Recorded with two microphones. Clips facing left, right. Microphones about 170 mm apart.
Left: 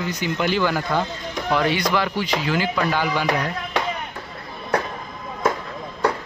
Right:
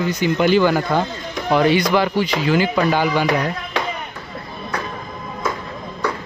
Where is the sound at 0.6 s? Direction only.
25° right (ahead or behind).